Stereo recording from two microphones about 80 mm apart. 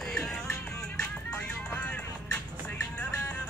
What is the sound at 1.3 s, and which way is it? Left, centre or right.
Music, centre.